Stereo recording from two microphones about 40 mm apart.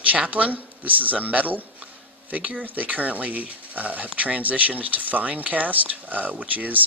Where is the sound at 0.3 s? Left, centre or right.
Right.